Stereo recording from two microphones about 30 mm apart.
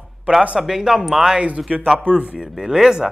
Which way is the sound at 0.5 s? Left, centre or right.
Centre.